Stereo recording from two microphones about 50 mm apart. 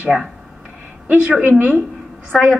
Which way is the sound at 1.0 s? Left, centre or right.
Right.